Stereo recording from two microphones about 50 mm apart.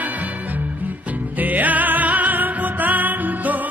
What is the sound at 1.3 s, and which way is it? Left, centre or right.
Music, right.